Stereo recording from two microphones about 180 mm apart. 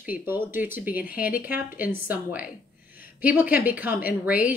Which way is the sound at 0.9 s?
55° left (ahead or behind).